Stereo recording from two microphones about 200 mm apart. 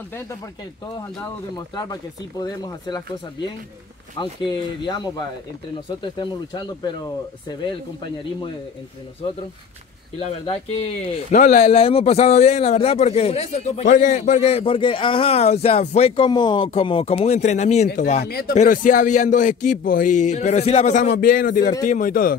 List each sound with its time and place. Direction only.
1.8 s speech: 20° left (ahead or behind)
4.2 s speech: 25° left (ahead or behind)
10.1 s a man's voice: 30° left (ahead or behind)
18.2 s a man's voice: 50° left (ahead or behind)
18.5 s a man's voice: 40° left (ahead or behind)